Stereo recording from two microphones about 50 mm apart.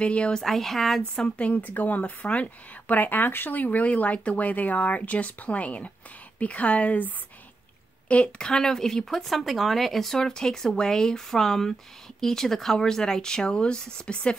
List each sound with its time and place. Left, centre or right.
0.0 s a woman's voice: left
0.4 s speech: centre
1.1 s a woman's voice: left
8.1 s speech: left